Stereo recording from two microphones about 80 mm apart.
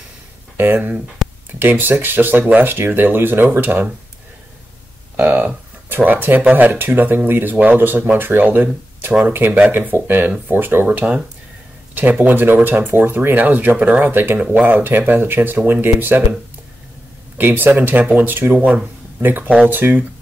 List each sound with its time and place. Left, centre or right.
0.6 s speech: right
5.1 s speech: right
17.4 s speech: right
18.7 s a sound: centre
19.2 s speech: right